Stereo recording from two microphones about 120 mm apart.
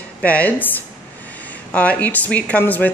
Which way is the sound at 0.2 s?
10° left (ahead or behind).